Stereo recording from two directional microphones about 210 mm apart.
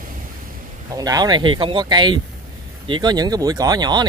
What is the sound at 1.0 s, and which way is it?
Speech, 20° right (ahead or behind).